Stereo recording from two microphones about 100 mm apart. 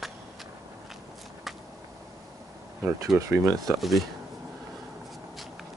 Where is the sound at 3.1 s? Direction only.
30° right (ahead or behind).